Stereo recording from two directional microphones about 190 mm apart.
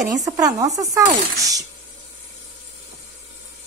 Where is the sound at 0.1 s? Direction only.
20° right (ahead or behind).